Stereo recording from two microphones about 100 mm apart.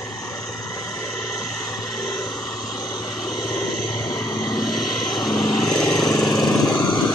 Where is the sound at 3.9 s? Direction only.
30° left (ahead or behind).